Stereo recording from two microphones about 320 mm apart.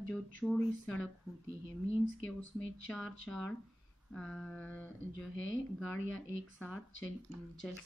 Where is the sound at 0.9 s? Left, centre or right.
Left.